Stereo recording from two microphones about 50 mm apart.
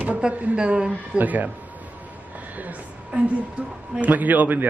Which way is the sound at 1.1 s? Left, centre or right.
Right.